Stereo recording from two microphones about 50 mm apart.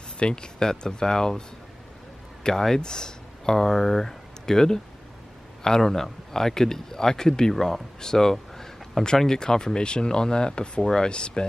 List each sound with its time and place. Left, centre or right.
0.2 s speech: centre
2.4 s speech: centre